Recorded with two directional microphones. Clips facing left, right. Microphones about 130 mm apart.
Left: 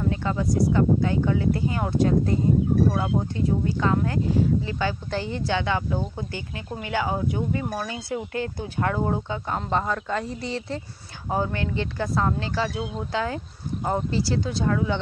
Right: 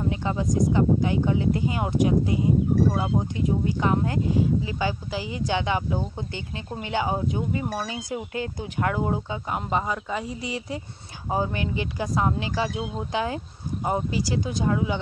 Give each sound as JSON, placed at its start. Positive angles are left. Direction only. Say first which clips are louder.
{"t": 0.0, "sound": "speech", "louder": "left 1 dB", "side_deg": -20}
{"t": 5.5, "sound": "speech", "louder": "even", "side_deg": -20}